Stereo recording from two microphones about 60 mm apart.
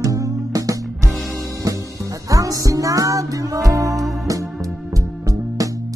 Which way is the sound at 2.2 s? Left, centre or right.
Right.